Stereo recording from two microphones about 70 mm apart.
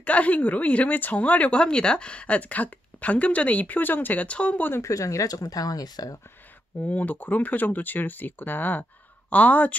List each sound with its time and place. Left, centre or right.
0.0 s speech: centre
4.8 s speech: left
6.9 s speech: left